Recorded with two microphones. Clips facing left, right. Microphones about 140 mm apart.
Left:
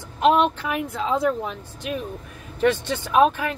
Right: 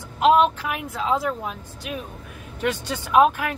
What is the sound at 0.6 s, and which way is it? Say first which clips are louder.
Speech: left 2 dB; 5° right (ahead or behind).